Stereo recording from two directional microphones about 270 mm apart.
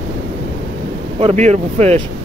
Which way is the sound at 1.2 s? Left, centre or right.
Right.